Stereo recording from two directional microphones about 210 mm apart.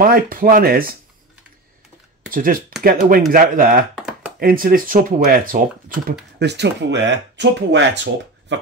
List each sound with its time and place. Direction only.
0.0 s speech: 40° right (ahead or behind)
2.3 s speech: 40° right (ahead or behind)
6.4 s speech: 55° right (ahead or behind)